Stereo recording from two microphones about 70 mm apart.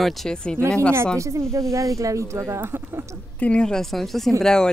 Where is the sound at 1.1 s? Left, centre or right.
Right.